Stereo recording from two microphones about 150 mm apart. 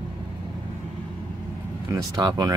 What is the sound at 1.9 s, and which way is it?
Speech, 25° right (ahead or behind).